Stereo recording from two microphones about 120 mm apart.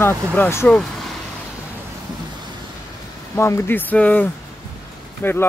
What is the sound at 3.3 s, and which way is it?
Speech, 20° left (ahead or behind).